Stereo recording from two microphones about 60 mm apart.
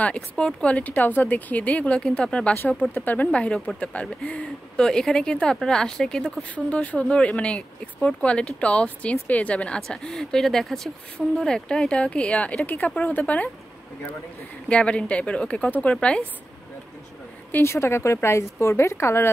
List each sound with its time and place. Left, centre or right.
0.0 s speech: centre
2.8 s speech: left
4.8 s speech: centre
6.5 s speech: left
9.8 s speech: centre
14.7 s speech: centre
17.5 s a woman's voice: left